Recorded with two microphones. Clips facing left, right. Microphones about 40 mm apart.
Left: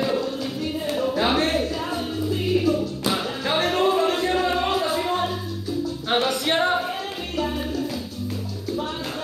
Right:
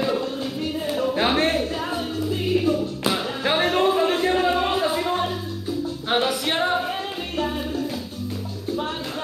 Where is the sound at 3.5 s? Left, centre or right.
Centre.